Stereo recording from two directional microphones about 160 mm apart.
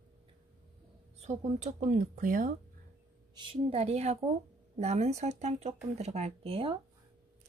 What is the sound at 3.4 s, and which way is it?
A woman's voice, 35° right (ahead or behind).